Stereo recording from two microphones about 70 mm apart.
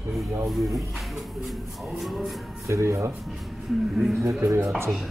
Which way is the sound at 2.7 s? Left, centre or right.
Right.